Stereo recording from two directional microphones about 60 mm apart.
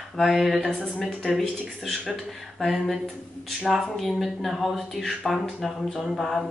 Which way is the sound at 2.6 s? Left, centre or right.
Centre.